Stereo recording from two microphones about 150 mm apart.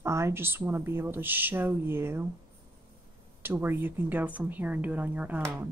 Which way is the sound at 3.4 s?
15° right (ahead or behind).